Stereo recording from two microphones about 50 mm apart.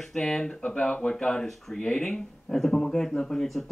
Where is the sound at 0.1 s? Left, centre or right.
Centre.